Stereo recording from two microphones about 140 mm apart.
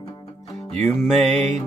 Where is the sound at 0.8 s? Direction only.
Centre (ahead or behind).